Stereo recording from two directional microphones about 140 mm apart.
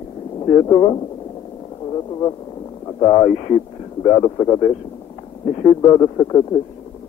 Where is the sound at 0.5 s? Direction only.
30° left (ahead or behind).